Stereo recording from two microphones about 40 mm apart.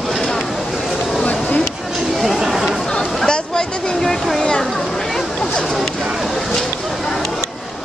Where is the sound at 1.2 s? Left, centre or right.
Left.